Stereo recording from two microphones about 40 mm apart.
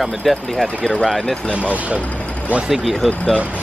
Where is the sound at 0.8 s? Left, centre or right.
Left.